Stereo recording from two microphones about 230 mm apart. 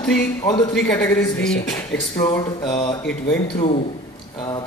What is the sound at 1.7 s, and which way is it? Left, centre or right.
Music, centre.